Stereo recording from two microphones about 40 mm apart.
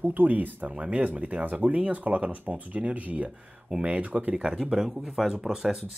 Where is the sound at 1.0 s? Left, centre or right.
Right.